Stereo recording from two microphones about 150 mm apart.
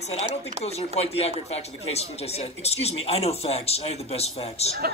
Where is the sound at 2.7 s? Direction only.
45° left (ahead or behind).